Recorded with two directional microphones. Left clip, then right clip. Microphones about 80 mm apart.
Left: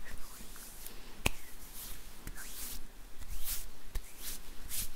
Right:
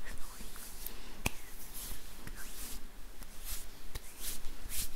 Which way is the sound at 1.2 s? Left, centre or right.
Centre.